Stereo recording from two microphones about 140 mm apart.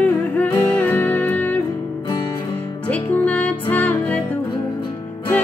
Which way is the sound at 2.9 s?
10° left (ahead or behind).